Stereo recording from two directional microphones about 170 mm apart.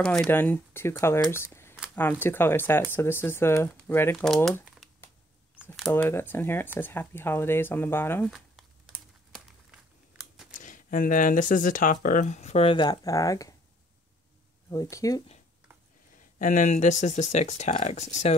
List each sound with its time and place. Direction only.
0.0 s speech: 5° left (ahead or behind)
5.8 s speech: 5° left (ahead or behind)
8.3 s crumpling: centre (ahead or behind)
10.6 s speech: 50° left (ahead or behind); by 13.6 s 20° left (ahead or behind)
14.7 s speech: 20° left (ahead or behind)
16.3 s speech: 50° left (ahead or behind)